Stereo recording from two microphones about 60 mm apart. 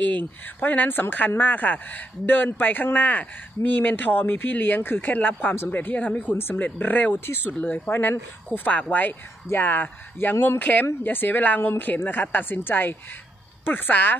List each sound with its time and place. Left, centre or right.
0.0 s speech: left
7.9 s speech: left